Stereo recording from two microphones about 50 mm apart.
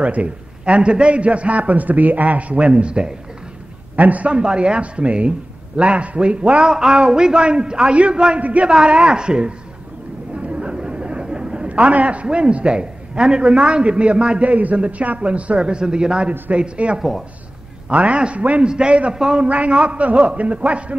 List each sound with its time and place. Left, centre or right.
0.0 s a man's voice: right
3.9 s a man's voice: right; by 19.4 s centre
19.4 s a man's voice: right